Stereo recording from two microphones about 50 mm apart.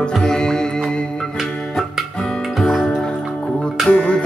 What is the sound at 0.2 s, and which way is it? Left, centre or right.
Music, centre.